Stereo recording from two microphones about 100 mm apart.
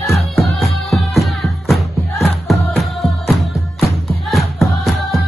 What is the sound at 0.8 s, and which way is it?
Music, centre (ahead or behind).